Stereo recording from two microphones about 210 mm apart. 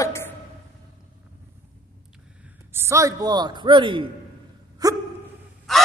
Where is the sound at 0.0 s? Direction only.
10° left (ahead or behind).